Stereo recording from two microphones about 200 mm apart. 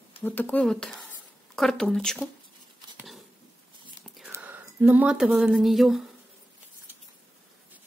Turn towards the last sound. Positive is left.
turn(degrees=0)  # may be behind; listen again after turning